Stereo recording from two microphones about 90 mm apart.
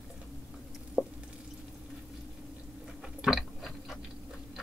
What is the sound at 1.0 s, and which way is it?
Drip, 5° right (ahead or behind).